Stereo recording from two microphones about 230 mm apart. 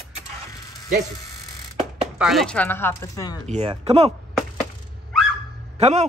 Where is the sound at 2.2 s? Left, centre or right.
Centre.